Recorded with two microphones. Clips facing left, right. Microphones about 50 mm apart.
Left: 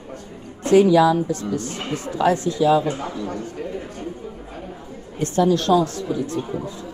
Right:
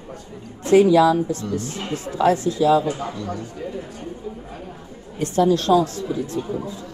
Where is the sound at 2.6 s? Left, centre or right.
Centre.